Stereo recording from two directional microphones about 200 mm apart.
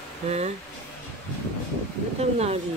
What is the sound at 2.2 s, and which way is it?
Speech, 30° right (ahead or behind).